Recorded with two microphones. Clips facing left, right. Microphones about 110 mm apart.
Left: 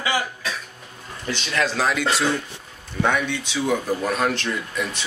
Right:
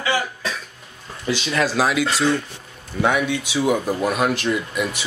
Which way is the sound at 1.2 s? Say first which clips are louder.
Right 3 dB; 5° right (ahead or behind).